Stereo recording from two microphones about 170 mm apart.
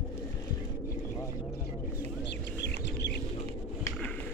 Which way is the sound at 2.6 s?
90° left.